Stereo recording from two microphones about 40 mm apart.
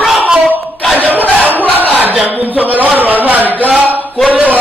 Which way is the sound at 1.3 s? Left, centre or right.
Right.